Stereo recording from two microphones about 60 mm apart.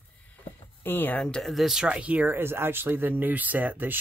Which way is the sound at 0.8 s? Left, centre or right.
Left.